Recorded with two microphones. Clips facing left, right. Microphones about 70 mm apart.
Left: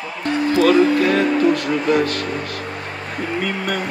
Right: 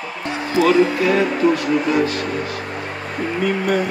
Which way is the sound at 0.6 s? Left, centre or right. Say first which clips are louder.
Even; left.